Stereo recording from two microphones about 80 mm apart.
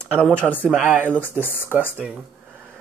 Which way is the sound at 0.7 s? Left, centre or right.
Centre.